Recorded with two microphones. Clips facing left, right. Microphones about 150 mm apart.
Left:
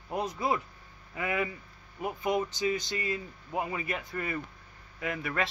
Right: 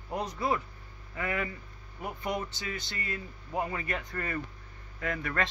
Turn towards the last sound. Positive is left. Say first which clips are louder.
# even
turn(degrees=10)  # may be behind; listen again after turning